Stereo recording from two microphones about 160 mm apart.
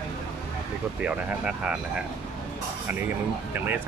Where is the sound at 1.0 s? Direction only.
5° right (ahead or behind).